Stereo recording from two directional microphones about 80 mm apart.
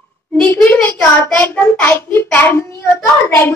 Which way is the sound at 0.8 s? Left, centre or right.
Left.